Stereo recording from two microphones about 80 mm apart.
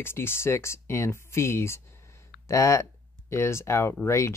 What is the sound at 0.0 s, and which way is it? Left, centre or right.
Speech, left.